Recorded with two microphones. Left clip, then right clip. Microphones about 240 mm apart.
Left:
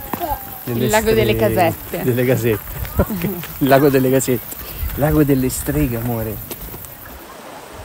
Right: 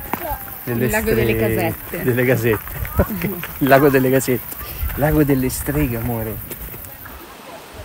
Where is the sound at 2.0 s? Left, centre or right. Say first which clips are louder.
Even; centre.